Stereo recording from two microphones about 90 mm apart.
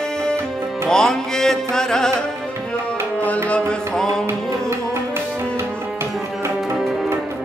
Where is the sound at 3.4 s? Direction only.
10° left (ahead or behind).